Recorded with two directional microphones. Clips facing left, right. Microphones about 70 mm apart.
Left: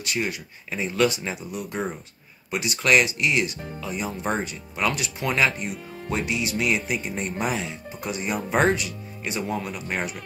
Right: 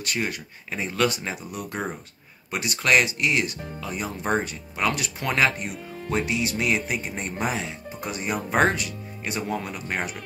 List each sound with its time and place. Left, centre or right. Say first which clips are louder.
0.0 s speech: left 1 dB; right